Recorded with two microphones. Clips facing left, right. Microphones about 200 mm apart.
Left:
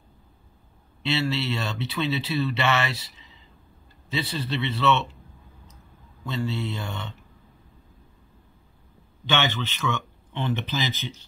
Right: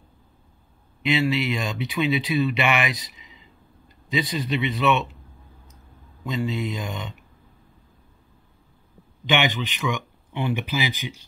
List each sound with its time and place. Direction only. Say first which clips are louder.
1.0 s speech: right 4 dB; 15° right (ahead or behind)
6.2 s speech: right 2 dB; 15° right (ahead or behind)
9.2 s speech: right 3 dB; 15° right (ahead or behind)